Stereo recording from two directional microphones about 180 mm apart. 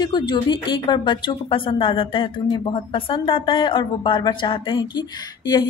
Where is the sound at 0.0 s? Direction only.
25° left (ahead or behind).